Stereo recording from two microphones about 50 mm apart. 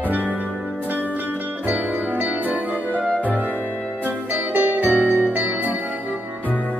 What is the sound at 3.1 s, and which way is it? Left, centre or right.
Music, left.